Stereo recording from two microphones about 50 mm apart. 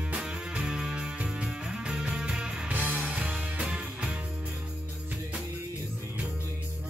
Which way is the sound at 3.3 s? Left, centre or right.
Right.